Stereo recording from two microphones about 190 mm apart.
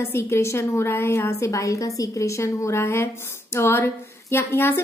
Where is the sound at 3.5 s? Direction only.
10° left (ahead or behind).